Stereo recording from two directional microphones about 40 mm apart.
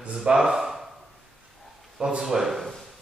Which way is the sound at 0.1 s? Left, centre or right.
Centre.